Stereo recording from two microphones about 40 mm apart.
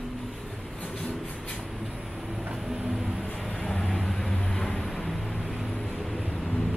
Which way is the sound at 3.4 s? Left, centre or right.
Centre.